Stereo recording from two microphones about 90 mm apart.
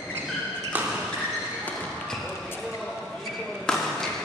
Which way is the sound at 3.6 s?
5° left (ahead or behind).